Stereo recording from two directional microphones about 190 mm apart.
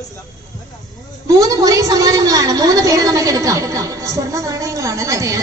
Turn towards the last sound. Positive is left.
turn(degrees=-15)  # may be behind; listen again after turning